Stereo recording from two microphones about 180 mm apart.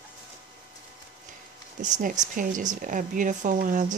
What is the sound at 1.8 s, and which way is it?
Speech, 45° right (ahead or behind).